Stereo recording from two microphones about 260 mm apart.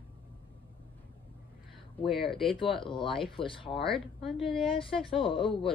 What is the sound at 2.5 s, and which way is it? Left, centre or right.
Speech, centre.